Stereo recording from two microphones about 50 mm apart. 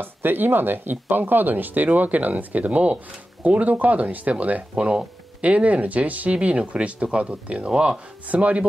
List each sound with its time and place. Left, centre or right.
0.0 s speech: right